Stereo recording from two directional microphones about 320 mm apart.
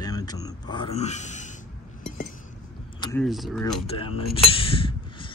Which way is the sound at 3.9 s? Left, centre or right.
Centre.